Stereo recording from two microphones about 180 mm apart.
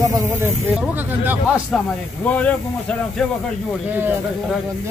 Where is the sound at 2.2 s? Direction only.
10° left (ahead or behind).